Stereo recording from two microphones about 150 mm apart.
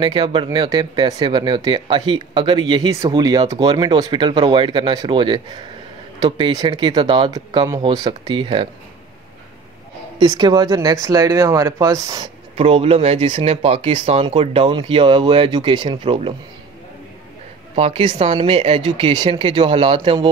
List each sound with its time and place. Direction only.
0.0 s speech: 35° right (ahead or behind)
10.1 s speech: 25° right (ahead or behind)
12.5 s speech: 40° right (ahead or behind)
17.7 s speech: 40° right (ahead or behind)